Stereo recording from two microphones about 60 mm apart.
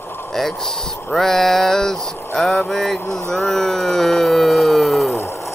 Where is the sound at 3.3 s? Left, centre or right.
Centre.